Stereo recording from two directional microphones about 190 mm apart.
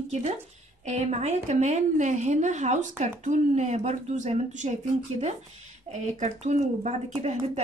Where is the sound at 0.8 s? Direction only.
35° right (ahead or behind).